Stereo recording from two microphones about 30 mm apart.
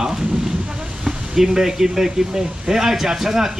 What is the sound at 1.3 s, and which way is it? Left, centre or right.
Speech, centre.